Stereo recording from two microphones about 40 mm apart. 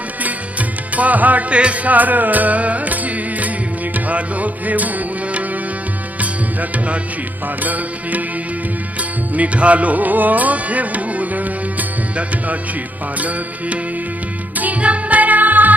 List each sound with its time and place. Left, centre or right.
0.2 s music: right
1.5 s music: right
7.6 s music: right
9.3 s music: right
14.6 s music: right